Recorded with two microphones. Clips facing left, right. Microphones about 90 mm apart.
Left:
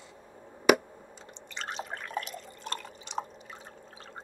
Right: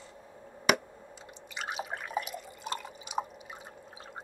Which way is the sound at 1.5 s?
10° right (ahead or behind).